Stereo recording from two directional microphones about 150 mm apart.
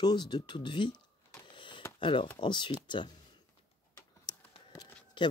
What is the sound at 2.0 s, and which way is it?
Speech, 35° left (ahead or behind).